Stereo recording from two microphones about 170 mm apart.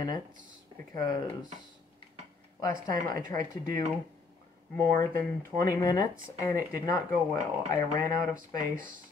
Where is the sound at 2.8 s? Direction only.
20° left (ahead or behind).